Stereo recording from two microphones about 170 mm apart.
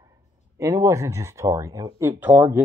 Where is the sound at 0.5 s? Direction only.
20° right (ahead or behind).